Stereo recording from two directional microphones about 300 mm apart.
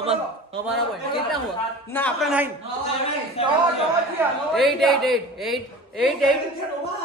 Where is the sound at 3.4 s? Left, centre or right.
Centre.